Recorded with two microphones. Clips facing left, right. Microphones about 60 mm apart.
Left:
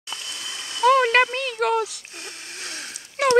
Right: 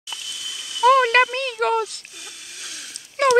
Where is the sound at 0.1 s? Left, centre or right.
Left.